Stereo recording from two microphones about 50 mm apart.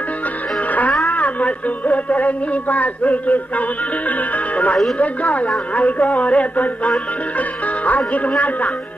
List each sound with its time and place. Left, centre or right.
0.7 s music: left
1.0 s speech: left
4.9 s speech: left
7.3 s music: left